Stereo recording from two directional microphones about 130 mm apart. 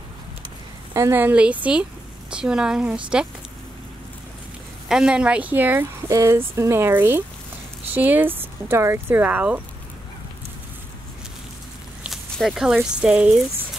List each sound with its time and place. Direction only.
0.9 s speech: 20° right (ahead or behind)
4.8 s speech: 5° right (ahead or behind)
12.0 s speech: centre (ahead or behind)